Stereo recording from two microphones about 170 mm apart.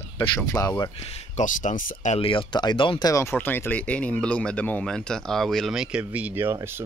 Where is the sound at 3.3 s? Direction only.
10° left (ahead or behind); by 6.9 s 15° right (ahead or behind).